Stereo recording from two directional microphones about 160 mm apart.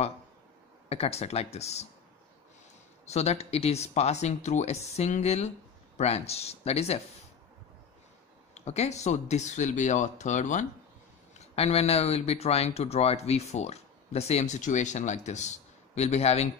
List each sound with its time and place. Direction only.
0.8 s speech: 40° left (ahead or behind)
3.1 s speech: 40° left (ahead or behind)
8.5 s speech: 45° left (ahead or behind)
11.3 s speech: 40° left (ahead or behind)